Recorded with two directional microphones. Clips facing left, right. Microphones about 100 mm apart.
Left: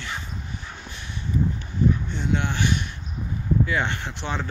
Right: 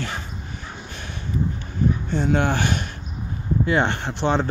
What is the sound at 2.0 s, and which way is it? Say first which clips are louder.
Speech: right 6 dB; 45° right (ahead or behind).